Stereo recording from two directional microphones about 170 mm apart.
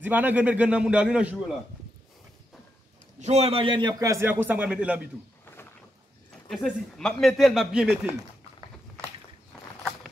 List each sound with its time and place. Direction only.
0.0 s a man's voice: 10° right (ahead or behind)
3.2 s a man's voice: 40° right (ahead or behind); by 5.0 s 5° right (ahead or behind)
6.5 s a man's voice: centre (ahead or behind)